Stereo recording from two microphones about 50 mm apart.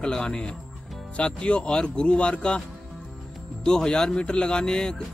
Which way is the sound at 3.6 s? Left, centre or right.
Centre.